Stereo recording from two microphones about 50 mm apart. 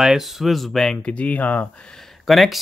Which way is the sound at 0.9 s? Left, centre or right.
Left.